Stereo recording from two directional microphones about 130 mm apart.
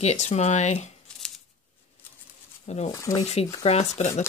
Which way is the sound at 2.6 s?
55° left (ahead or behind).